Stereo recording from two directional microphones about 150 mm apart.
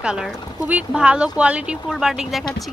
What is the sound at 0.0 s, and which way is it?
Speech, 5° right (ahead or behind).